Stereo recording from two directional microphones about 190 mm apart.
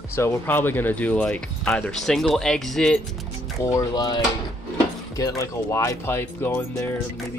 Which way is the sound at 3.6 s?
20° left (ahead or behind).